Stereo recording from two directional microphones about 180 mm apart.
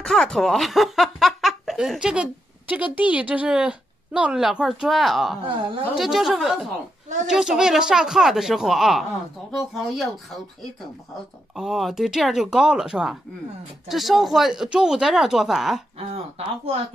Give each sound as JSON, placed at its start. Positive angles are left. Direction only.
{"t": 0.0, "sound": "speech", "side_deg": 5}
{"t": 5.4, "sound": "a woman's voice", "side_deg": -30}
{"t": 5.9, "sound": "speech", "side_deg": 0}
{"t": 11.5, "sound": "speech", "side_deg": 0}
{"t": 16.0, "sound": "speech", "side_deg": -35}